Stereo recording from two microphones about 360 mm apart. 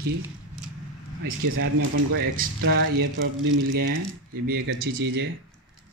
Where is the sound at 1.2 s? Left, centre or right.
Right.